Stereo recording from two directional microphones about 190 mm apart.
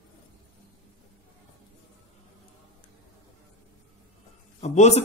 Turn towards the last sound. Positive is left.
turn(degrees=35)  # may be behind; listen again after turning